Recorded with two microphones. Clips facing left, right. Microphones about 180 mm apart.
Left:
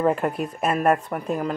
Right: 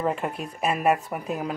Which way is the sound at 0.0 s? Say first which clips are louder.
Left 5 dB; centre (ahead or behind).